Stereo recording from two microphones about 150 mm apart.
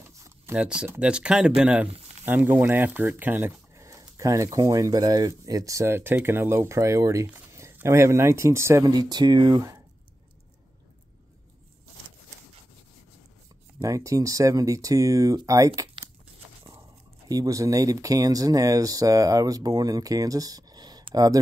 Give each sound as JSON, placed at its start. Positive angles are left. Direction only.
{"t": 0.6, "sound": "speech", "side_deg": -5}
{"t": 13.7, "sound": "speech", "side_deg": -20}
{"t": 17.3, "sound": "speech", "side_deg": -25}